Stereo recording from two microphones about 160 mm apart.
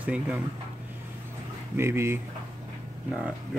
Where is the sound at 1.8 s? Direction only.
15° right (ahead or behind).